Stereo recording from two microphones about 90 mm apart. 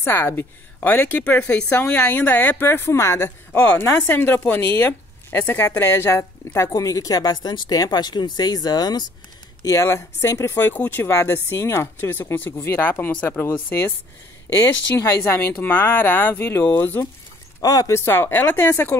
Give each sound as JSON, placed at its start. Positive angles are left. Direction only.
{"t": 0.0, "sound": "speech", "side_deg": 25}
{"t": 9.6, "sound": "speech", "side_deg": 35}
{"t": 17.6, "sound": "speech", "side_deg": 45}
{"t": 17.9, "sound": "speech", "side_deg": 25}